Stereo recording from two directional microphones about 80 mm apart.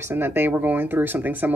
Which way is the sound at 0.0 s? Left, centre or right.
Right.